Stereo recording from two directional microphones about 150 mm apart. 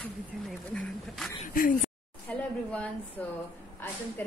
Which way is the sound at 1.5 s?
70° left (ahead or behind).